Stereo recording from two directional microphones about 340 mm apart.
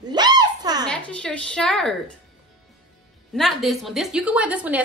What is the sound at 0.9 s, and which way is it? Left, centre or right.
A woman's voice, centre.